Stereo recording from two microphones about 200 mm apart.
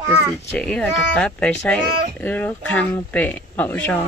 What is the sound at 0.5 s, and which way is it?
Speech, 5° left (ahead or behind).